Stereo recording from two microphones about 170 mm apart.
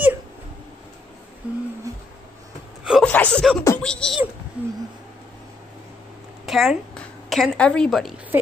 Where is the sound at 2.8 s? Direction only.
5° right (ahead or behind).